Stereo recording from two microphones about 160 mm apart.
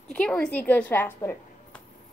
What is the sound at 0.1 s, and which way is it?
A woman's voice, 5° left (ahead or behind).